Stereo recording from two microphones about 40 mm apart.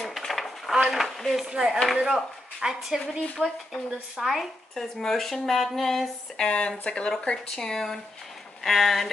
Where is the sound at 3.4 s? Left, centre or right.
Right.